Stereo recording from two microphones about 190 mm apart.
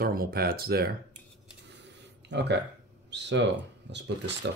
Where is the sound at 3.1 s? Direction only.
65° right (ahead or behind).